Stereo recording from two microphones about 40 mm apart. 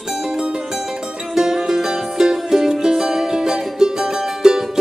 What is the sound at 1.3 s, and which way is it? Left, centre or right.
Music, centre.